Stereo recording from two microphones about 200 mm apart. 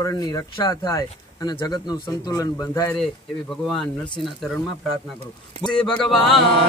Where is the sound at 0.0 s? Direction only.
20° left (ahead or behind).